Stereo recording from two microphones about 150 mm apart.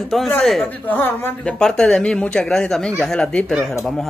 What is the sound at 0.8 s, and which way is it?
Speech, 10° left (ahead or behind).